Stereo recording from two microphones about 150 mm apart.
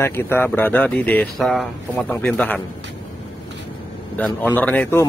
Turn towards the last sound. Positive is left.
turn(degrees=10)  # may be behind; listen again after turning